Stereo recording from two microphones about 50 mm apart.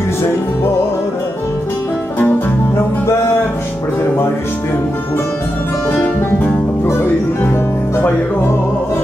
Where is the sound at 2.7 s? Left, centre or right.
Left.